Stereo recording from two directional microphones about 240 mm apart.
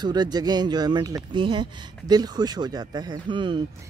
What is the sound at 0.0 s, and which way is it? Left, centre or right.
Speech, centre.